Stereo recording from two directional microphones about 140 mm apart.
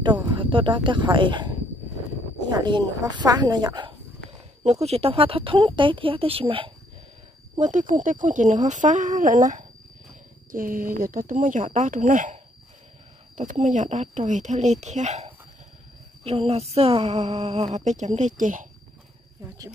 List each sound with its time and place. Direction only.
0.3 s speech: 40° right (ahead or behind)
4.6 s speech: 50° right (ahead or behind)
7.5 s speech: 60° right (ahead or behind)
10.5 s speech: 90° right; by 12.4 s 65° right (ahead or behind)
13.4 s speech: 60° right (ahead or behind)
16.3 s a sound: 45° right (ahead or behind)
17.7 s speech: 55° right (ahead or behind)